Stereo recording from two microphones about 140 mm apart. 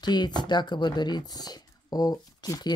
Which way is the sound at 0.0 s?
30° left (ahead or behind).